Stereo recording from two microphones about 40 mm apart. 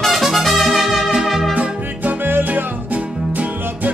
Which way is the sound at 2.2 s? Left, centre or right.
Right.